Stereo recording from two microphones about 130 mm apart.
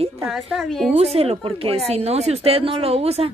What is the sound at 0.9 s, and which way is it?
A woman's voice, 50° right (ahead or behind).